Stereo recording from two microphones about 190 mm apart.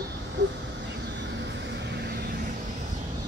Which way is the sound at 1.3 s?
70° right (ahead or behind).